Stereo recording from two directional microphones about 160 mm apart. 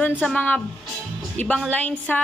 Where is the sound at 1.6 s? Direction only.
10° left (ahead or behind).